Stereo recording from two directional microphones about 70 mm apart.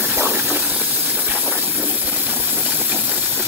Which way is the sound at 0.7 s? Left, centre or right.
Centre.